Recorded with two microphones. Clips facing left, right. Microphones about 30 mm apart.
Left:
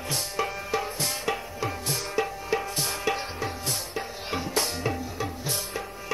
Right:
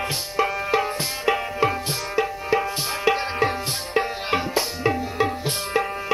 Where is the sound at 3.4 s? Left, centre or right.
Right.